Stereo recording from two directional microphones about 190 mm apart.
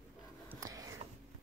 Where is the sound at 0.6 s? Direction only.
20° right (ahead or behind).